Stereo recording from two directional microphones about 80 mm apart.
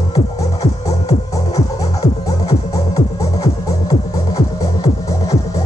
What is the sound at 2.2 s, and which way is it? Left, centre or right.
Music, left.